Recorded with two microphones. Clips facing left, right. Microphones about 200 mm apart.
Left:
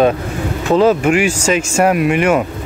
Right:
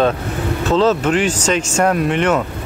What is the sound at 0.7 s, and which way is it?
Speech, 10° left (ahead or behind).